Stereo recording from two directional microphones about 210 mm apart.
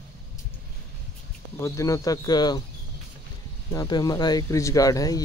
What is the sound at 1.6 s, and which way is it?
Speech, 15° left (ahead or behind).